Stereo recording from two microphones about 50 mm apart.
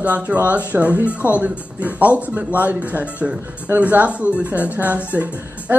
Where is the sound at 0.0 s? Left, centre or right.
Right.